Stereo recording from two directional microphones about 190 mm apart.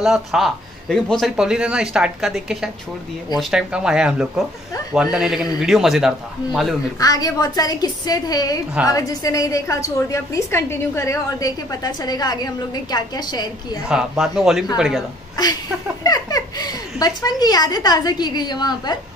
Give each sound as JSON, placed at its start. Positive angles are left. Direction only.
{"t": 0.0, "sound": "speech", "side_deg": 0}
{"t": 7.0, "sound": "a woman's voice", "side_deg": 20}
{"t": 13.8, "sound": "speech", "side_deg": -5}
{"t": 16.0, "sound": "speech", "side_deg": 20}